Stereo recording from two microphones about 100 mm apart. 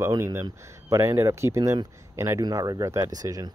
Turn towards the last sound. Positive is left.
turn(degrees=-35)  # may be behind; listen again after turning